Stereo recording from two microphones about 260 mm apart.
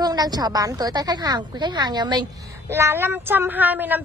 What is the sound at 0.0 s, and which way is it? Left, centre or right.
A woman's voice, centre.